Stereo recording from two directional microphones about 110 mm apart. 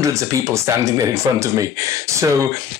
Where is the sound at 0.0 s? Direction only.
30° right (ahead or behind).